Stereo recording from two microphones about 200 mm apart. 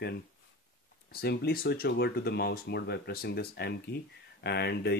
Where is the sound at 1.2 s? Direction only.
50° left (ahead or behind).